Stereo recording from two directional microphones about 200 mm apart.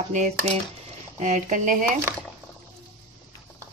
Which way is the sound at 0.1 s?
40° right (ahead or behind).